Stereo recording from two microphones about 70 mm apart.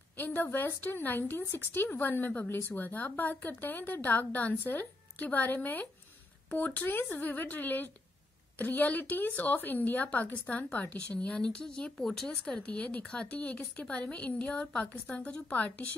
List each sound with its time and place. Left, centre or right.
0.2 s a woman's voice: left